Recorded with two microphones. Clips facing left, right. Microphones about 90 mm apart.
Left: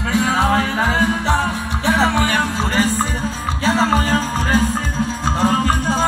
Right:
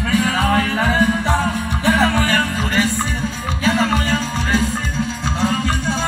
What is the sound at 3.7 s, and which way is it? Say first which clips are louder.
Music: left 1 dB; 35° left (ahead or behind).